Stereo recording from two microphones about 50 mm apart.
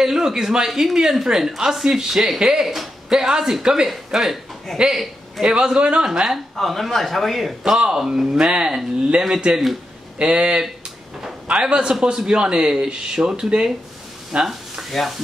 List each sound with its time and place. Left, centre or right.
0.0 s speech: centre
4.7 s a man's voice: centre
5.5 s a man's voice: centre
6.0 s speech: centre
7.6 s speech: centre
10.1 s a man's voice: right
11.7 s speech: centre
14.5 s speech: centre